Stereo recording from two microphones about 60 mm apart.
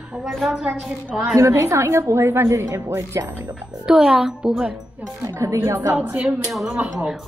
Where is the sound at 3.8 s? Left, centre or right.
Centre.